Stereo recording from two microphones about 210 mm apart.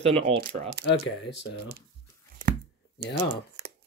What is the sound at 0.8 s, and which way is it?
Speech, 50° right (ahead or behind).